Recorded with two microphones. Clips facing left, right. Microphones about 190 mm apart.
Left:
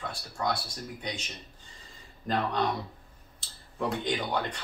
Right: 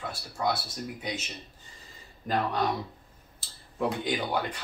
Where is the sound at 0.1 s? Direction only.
5° right (ahead or behind).